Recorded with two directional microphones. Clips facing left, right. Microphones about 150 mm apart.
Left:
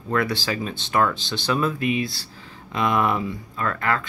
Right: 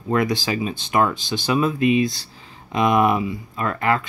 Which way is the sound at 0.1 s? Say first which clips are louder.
Right 3 dB; 15° right (ahead or behind).